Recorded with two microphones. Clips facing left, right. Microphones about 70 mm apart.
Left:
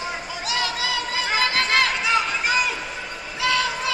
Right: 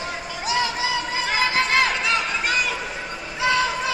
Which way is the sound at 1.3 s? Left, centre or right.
Centre.